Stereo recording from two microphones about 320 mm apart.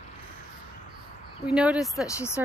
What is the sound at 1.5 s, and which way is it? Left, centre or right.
Speech, centre.